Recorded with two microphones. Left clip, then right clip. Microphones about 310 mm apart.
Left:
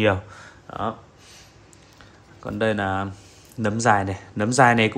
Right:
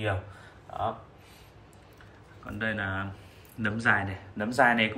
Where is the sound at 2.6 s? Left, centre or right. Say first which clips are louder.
Left 8 dB; centre.